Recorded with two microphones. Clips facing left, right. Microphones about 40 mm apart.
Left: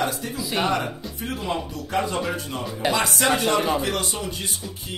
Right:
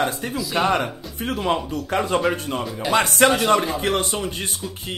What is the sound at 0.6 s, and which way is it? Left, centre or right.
Speech, right.